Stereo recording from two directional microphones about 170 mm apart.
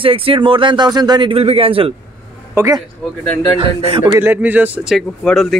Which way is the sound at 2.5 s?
15° right (ahead or behind).